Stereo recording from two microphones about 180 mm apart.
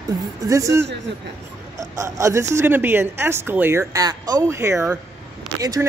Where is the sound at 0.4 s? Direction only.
20° right (ahead or behind).